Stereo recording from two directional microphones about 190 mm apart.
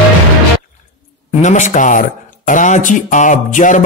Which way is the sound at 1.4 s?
40° left (ahead or behind).